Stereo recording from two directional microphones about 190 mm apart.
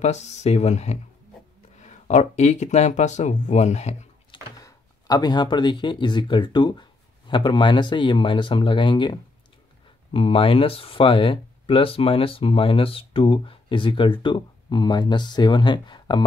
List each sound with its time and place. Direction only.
0.0 s speech: 35° left (ahead or behind)
4.6 s speech: 20° left (ahead or behind)